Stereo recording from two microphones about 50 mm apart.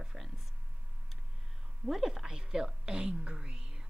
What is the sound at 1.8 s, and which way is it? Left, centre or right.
Speech, centre.